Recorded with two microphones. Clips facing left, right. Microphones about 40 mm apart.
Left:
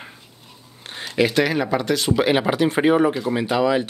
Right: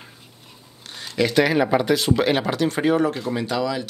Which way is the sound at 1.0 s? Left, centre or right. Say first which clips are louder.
Left 2 dB; centre.